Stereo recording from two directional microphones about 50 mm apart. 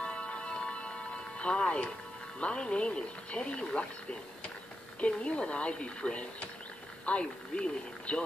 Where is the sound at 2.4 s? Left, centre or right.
Left.